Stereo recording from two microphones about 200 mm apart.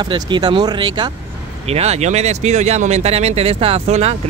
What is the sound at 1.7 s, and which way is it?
Speech, 30° right (ahead or behind).